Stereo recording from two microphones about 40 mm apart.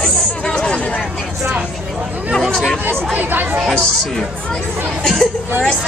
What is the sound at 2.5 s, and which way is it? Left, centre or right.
Chatter, centre.